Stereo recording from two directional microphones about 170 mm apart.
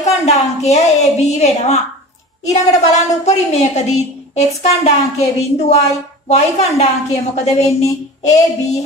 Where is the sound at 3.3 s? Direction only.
40° left (ahead or behind).